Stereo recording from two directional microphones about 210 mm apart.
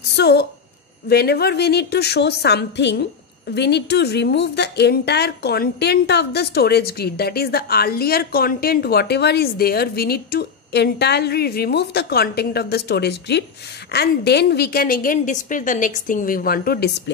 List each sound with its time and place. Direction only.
0.1 s a woman's voice: 50° left (ahead or behind)